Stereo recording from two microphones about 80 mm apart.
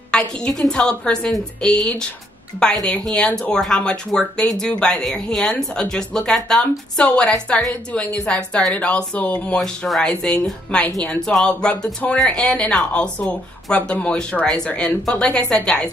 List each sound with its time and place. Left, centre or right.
0.1 s speech: centre
9.6 s speech: centre